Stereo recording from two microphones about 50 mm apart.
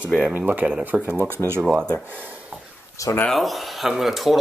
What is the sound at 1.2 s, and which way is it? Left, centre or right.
Speech, right.